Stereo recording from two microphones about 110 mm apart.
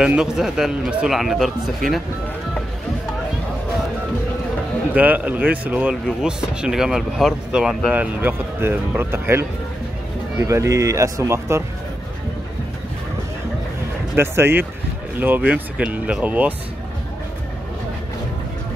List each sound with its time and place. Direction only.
0.0 s speech: 5° right (ahead or behind)
4.9 s speech: 15° right (ahead or behind)
7.9 s speech: 15° right (ahead or behind)
14.1 s speech: 20° right (ahead or behind)